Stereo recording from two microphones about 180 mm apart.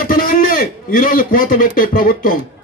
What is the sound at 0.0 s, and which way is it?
A man's voice, 55° left (ahead or behind).